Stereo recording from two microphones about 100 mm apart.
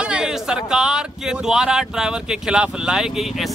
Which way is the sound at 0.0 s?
10° right (ahead or behind).